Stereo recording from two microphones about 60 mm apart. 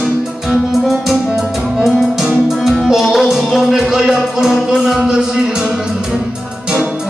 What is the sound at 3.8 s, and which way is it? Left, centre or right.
Speech, centre.